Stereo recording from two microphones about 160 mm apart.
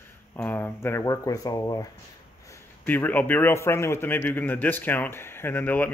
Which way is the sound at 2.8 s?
10° left (ahead or behind).